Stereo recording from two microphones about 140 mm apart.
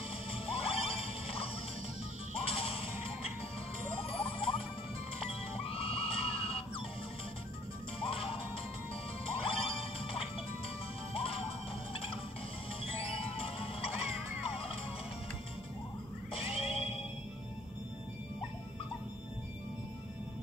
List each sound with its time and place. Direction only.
0.3 s music: 45° left (ahead or behind)
4.0 s rodents: 45° left (ahead or behind)
5.2 s music: 45° left (ahead or behind)
8.0 s music: 45° left (ahead or behind)
16.3 s a sound: 45° left (ahead or behind)